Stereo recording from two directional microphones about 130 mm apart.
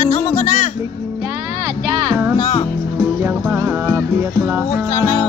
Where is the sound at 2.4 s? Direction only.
45° left (ahead or behind).